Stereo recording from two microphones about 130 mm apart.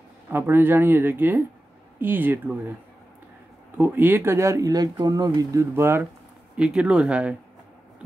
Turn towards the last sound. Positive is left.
turn(degrees=-10)  # may be behind; listen again after turning